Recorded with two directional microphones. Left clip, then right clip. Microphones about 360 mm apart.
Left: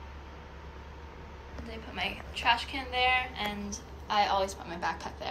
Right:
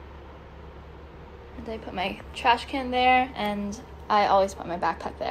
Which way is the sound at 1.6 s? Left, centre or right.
Centre.